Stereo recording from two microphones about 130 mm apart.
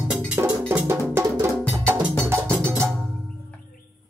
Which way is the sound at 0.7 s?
20° right (ahead or behind).